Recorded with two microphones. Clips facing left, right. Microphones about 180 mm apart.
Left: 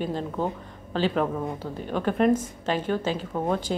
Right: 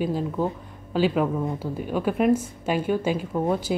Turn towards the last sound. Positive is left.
turn(degrees=-10)  # may be behind; listen again after turning